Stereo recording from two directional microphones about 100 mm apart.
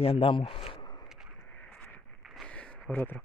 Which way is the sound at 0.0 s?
70° left (ahead or behind).